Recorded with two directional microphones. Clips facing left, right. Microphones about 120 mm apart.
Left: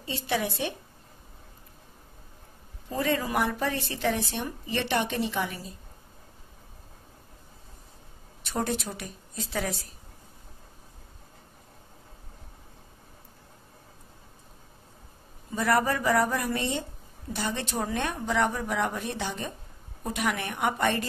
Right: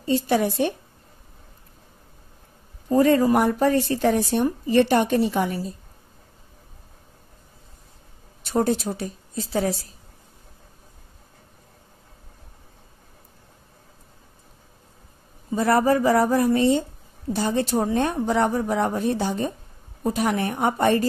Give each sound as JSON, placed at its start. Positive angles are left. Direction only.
{"t": 0.3, "sound": "speech", "side_deg": -45}
{"t": 2.9, "sound": "speech", "side_deg": -40}
{"t": 8.5, "sound": "a woman's voice", "side_deg": -35}
{"t": 15.5, "sound": "a woman's voice", "side_deg": -35}